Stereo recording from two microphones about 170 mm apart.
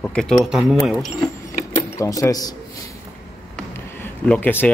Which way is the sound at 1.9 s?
15° left (ahead or behind).